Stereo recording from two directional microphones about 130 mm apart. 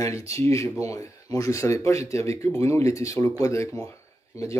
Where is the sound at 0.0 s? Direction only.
25° left (ahead or behind).